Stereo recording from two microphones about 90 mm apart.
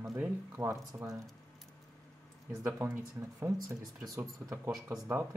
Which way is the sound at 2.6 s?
25° right (ahead or behind).